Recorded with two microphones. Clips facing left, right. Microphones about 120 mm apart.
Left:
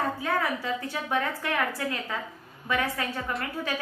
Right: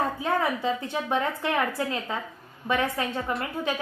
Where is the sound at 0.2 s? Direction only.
20° right (ahead or behind).